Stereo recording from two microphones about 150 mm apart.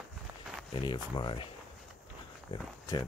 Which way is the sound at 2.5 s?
35° left (ahead or behind).